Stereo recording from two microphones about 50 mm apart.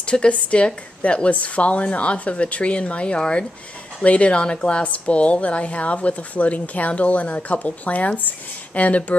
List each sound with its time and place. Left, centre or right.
0.0 s a woman's voice: left